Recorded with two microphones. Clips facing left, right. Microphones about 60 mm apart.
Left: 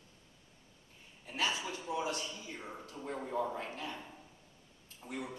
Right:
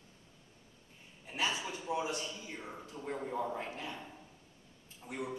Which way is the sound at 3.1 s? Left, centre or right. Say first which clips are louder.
Left 1 dB; centre.